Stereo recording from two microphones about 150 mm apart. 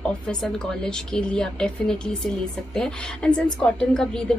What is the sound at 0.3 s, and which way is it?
A woman's voice, 5° left (ahead or behind).